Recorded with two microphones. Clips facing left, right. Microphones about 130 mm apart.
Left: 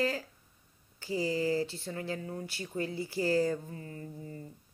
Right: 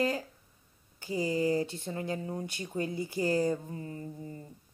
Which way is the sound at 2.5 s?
20° right (ahead or behind).